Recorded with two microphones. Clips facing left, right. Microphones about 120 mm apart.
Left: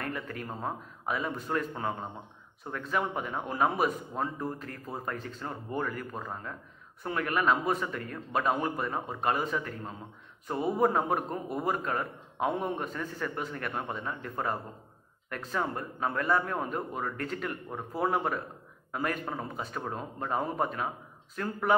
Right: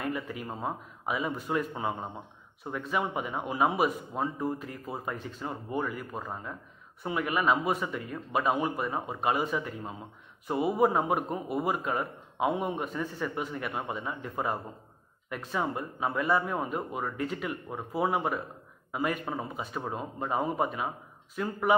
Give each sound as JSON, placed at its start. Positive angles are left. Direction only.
{"t": 0.0, "sound": "a man's voice", "side_deg": -5}